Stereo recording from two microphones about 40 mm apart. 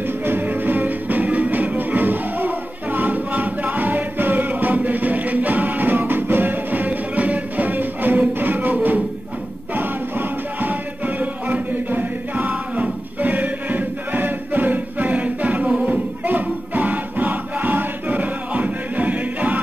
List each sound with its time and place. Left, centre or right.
0.0 s music: right